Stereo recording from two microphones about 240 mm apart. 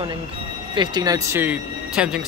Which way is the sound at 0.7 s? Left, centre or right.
Centre.